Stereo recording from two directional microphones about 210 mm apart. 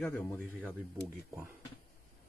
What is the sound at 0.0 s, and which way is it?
Speech, 10° left (ahead or behind).